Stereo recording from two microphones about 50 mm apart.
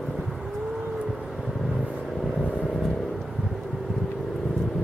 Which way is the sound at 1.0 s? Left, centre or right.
Centre.